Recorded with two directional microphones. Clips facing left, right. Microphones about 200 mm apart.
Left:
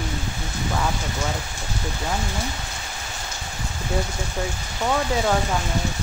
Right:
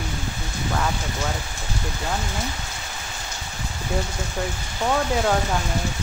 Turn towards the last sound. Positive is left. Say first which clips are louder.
# even
turn(degrees=0)  # may be behind; listen again after turning